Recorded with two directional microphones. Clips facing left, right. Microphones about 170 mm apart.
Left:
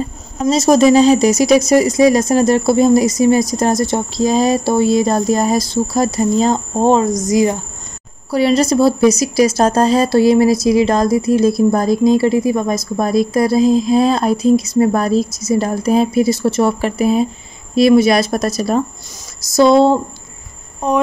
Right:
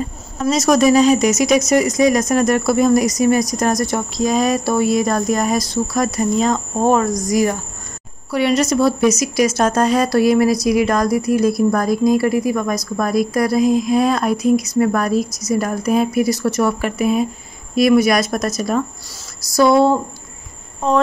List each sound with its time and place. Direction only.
0.4 s speech: 30° left (ahead or behind)
8.3 s speech: 30° left (ahead or behind)
20.8 s a sound: 15° left (ahead or behind)